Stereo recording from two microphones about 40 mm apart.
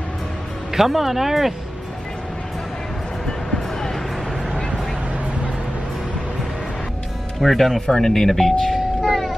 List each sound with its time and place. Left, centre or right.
0.7 s speech: centre
3.3 s music: centre
7.3 s speech: centre
7.8 s speech: centre